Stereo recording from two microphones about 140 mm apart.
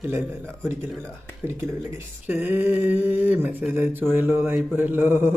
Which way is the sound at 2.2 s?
10° right (ahead or behind).